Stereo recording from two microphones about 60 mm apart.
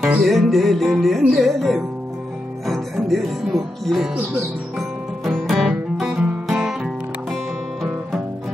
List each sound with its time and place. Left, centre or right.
0.2 s music: centre
2.6 s speech: centre
4.7 s music: centre